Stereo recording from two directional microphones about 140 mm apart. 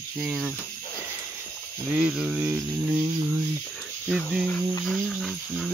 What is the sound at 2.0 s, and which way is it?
Speech, 5° right (ahead or behind).